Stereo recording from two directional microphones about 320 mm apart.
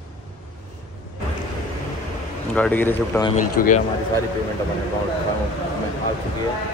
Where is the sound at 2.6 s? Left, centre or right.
Centre.